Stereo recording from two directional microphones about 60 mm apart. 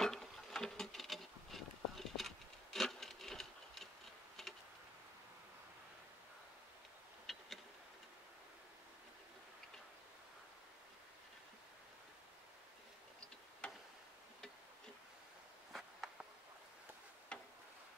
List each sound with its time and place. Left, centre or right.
0.0 s insect: centre
7.2 s a sound: centre
13.6 s tick-tock: centre
17.3 s tick-tock: centre